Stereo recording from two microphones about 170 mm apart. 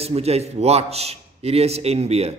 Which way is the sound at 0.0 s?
35° right (ahead or behind).